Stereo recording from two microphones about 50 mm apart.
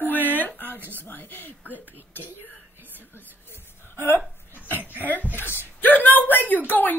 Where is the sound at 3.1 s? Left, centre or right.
Left.